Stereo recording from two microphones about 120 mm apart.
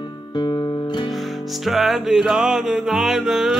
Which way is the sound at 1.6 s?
Centre (ahead or behind).